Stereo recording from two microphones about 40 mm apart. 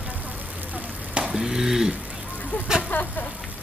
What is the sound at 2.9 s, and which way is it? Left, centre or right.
Vehicle, left.